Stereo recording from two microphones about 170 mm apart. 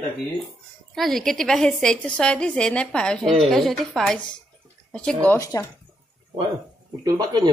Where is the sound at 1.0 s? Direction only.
Centre (ahead or behind).